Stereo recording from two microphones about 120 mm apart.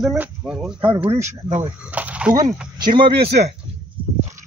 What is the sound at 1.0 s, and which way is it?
Speech, 20° right (ahead or behind).